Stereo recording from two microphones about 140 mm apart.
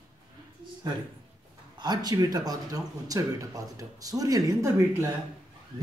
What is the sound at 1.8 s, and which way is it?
Speech, 30° right (ahead or behind).